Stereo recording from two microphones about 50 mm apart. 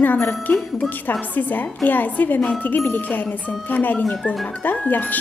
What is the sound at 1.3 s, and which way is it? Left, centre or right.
A woman's voice, left.